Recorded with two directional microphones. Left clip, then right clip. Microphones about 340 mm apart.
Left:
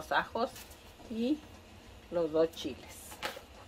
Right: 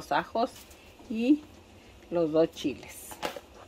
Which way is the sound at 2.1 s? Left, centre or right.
Right.